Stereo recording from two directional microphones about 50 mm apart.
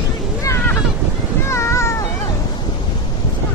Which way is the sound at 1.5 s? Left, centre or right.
Left.